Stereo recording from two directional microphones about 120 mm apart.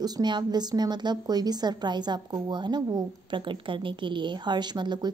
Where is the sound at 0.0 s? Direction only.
35° right (ahead or behind).